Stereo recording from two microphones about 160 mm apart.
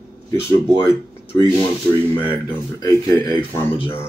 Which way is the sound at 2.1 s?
10° left (ahead or behind).